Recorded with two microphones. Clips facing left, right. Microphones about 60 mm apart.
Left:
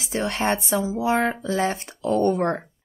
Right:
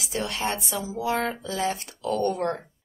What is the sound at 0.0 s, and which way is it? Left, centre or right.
Speech, left.